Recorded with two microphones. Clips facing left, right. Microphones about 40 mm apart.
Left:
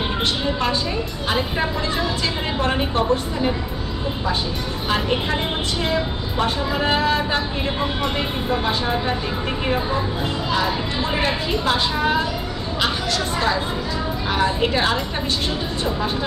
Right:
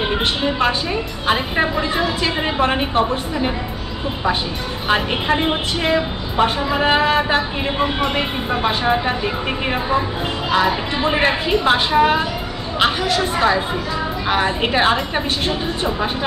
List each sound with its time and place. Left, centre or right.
0.2 s a sound: right
1.2 s speech: right
4.8 s speech: right
10.5 s speech: right